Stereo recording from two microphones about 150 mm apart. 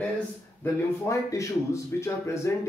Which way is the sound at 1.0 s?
20° left (ahead or behind).